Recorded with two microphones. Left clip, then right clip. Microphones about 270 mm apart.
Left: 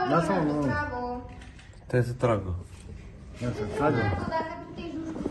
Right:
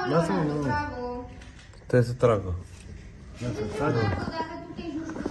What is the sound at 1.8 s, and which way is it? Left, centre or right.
Speech, right.